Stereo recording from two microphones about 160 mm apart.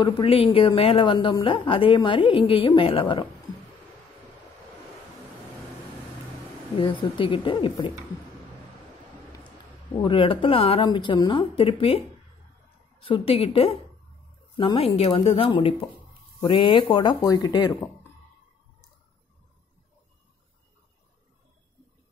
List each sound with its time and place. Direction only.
0.0 s a woman's voice: 35° left (ahead or behind)
6.8 s a woman's voice: 30° left (ahead or behind)
10.0 s a woman's voice: 35° left (ahead or behind)
13.0 s a woman's voice: 35° left (ahead or behind)